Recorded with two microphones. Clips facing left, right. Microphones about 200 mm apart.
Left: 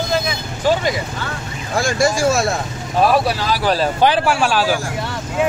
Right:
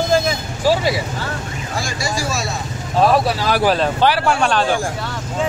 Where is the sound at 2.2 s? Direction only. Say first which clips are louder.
Left 7 dB; 50° left (ahead or behind).